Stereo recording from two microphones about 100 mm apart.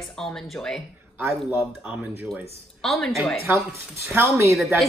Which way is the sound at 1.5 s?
10° right (ahead or behind).